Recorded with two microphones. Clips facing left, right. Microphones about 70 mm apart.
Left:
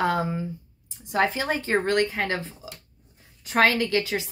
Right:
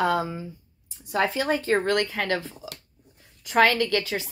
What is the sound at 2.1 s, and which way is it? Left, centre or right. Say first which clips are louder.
Speech: right 1 dB; left.